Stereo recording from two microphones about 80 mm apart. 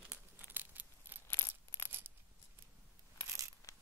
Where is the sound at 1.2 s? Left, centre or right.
Left.